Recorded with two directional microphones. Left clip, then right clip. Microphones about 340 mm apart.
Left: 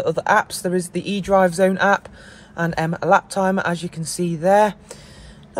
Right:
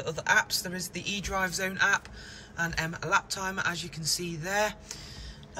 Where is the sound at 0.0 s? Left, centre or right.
Centre.